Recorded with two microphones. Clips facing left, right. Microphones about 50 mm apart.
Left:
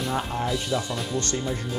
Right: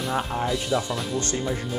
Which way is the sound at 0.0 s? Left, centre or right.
Centre.